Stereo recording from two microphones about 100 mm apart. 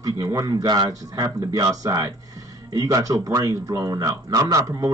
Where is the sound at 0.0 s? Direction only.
35° right (ahead or behind).